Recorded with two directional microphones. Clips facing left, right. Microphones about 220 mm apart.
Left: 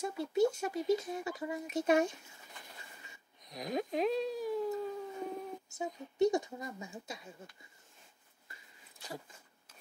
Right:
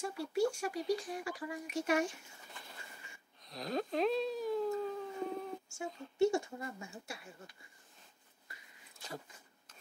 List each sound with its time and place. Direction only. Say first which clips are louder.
0.0 s speech: left 3 dB; 20° left (ahead or behind)
3.4 s speech: left 1 dB; 15° left (ahead or behind)